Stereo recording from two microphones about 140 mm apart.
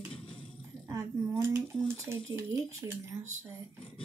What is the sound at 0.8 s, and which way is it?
Speech, 20° right (ahead or behind).